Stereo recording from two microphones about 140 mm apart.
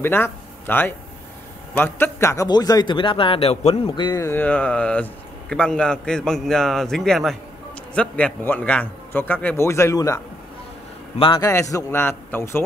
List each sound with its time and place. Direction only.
0.0 s speech: 15° left (ahead or behind); by 4.2 s 35° left (ahead or behind)
4.2 s a man's voice: 15° left (ahead or behind)
11.3 s a man's voice: 20° left (ahead or behind)